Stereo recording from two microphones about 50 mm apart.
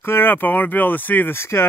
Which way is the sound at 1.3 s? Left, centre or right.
Left.